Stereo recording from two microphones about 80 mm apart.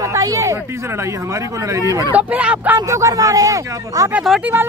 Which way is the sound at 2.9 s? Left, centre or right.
Right.